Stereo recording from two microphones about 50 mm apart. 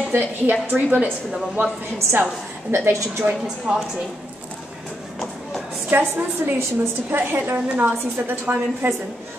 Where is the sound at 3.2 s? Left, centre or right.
Right.